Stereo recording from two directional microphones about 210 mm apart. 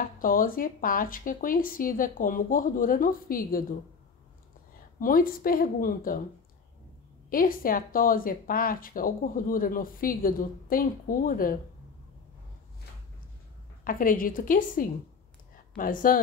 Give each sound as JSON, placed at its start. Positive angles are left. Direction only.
{"t": 0.2, "sound": "speech", "side_deg": 40}
{"t": 5.0, "sound": "speech", "side_deg": 40}
{"t": 7.2, "sound": "speech", "side_deg": 40}
{"t": 13.8, "sound": "speech", "side_deg": 40}